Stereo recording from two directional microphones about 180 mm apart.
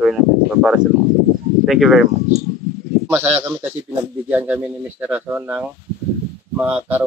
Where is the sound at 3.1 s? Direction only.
10° right (ahead or behind).